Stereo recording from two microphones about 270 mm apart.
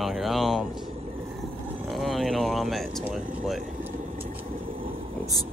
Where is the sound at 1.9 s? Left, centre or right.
Centre.